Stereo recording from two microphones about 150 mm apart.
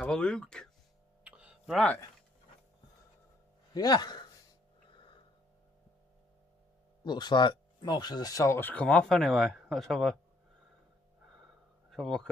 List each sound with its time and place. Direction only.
0.0 s speech: 5° left (ahead or behind)
1.2 s a sound: 10° right (ahead or behind)
3.7 s speech: 25° left (ahead or behind)
4.9 s a sound: 30° left (ahead or behind)
7.1 s speech: 30° left (ahead or behind); by 10.1 s centre (ahead or behind)
11.9 s speech: centre (ahead or behind)